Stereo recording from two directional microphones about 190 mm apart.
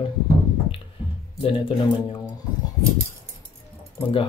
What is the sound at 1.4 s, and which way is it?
Speech, 25° left (ahead or behind).